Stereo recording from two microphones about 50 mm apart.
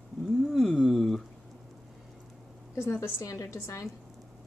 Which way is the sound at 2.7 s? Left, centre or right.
Left.